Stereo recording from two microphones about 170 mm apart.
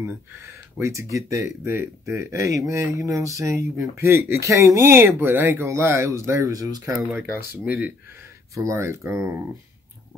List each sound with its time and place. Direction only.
0.4 s speech: 15° right (ahead or behind)